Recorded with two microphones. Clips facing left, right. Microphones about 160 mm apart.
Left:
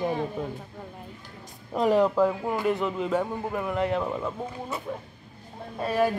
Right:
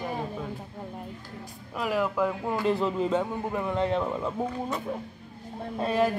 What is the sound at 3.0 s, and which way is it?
Speech, 10° left (ahead or behind).